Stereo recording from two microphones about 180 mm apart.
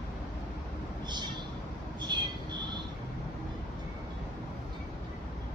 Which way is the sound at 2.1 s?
25° right (ahead or behind).